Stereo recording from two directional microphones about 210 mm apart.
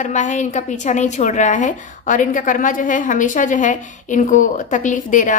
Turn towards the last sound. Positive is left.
turn(degrees=40)  # may be behind; listen again after turning